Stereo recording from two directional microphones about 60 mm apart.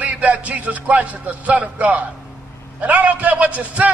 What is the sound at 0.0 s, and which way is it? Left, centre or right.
A man's voice, right.